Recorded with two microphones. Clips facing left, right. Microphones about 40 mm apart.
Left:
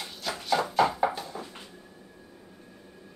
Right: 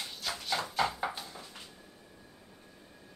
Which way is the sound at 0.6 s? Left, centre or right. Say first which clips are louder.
Left 8 dB; left.